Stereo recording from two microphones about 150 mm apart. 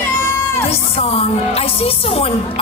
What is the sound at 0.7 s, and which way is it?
Speech, 40° left (ahead or behind).